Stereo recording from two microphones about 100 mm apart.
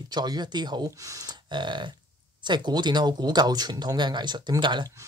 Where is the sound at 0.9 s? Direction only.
35° right (ahead or behind).